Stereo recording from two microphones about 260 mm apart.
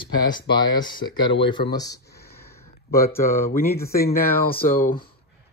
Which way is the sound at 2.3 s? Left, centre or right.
Centre.